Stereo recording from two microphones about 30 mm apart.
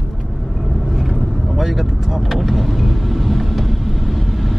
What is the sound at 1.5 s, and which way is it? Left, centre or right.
Speech, centre.